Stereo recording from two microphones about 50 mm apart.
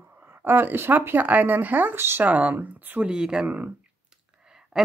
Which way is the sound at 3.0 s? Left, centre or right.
Centre.